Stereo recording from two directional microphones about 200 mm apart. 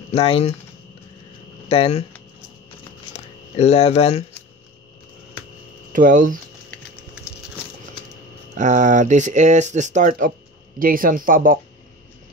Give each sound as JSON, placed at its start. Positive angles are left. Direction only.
{"t": 0.1, "sound": "speech", "side_deg": 30}
{"t": 1.7, "sound": "speech", "side_deg": 30}
{"t": 3.5, "sound": "speech", "side_deg": 30}
{"t": 5.9, "sound": "speech", "side_deg": -40}
{"t": 8.5, "sound": "speech", "side_deg": -35}